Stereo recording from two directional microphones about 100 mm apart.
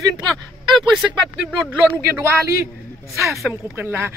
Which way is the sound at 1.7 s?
15° right (ahead or behind).